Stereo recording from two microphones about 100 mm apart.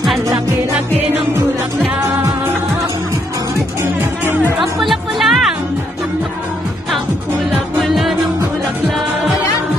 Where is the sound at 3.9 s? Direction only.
20° right (ahead or behind).